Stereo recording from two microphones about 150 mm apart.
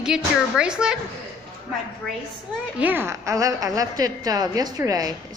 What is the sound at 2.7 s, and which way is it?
A woman's voice, 10° right (ahead or behind).